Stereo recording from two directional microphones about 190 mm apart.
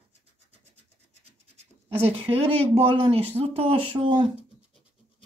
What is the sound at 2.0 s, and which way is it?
Speech, 30° right (ahead or behind).